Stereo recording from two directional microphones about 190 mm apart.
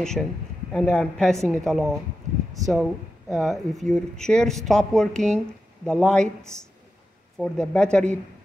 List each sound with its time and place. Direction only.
0.7 s speech: 5° left (ahead or behind)
7.3 s speech: 5° left (ahead or behind)